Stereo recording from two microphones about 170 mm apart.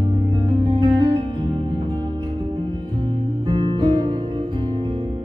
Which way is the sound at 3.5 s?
30° right (ahead or behind).